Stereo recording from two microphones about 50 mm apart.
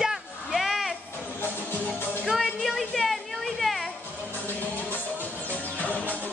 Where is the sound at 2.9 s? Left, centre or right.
Centre.